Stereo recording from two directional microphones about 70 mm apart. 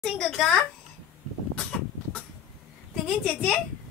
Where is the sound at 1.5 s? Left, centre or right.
Centre.